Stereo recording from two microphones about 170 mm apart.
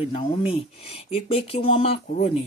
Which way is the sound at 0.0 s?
35° left (ahead or behind).